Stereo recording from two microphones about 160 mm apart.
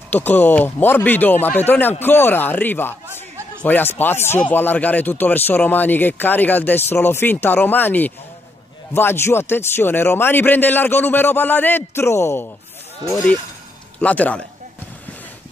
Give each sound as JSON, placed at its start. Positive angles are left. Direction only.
{"t": 0.1, "sound": "a man's voice", "side_deg": 10}